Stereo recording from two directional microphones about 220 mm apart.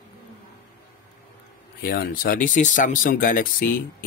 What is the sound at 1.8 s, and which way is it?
Speech, 45° left (ahead or behind).